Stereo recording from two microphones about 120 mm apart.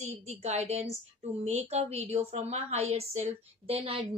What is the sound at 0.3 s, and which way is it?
A woman's voice, 65° right (ahead or behind).